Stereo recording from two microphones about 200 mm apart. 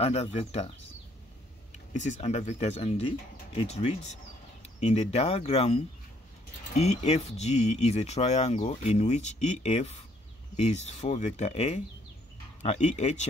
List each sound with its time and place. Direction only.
0.0 s speech: 30° left (ahead or behind)
2.0 s speech: 35° left (ahead or behind)
6.8 s speech: 35° left (ahead or behind)